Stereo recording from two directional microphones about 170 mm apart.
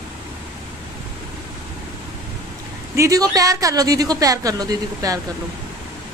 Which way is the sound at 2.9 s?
20° right (ahead or behind).